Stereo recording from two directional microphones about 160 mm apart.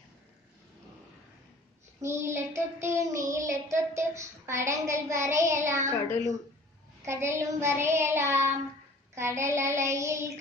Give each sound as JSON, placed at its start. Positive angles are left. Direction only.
{"t": 2.0, "sound": "child singing", "side_deg": -15}
{"t": 7.0, "sound": "child singing", "side_deg": -15}